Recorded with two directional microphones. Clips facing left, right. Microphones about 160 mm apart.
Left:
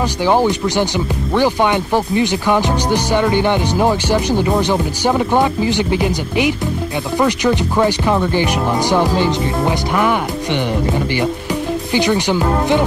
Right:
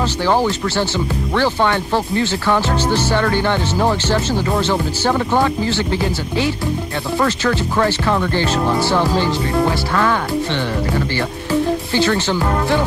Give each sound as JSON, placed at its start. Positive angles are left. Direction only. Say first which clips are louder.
{"t": 0.2, "sound": "speech", "louder": "left 3 dB", "side_deg": 15}
{"t": 11.9, "sound": "speech", "louder": "left 6 dB", "side_deg": 15}